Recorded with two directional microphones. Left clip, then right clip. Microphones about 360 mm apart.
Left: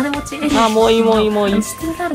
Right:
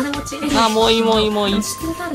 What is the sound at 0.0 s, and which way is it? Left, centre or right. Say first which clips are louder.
Speech: left 3 dB; centre.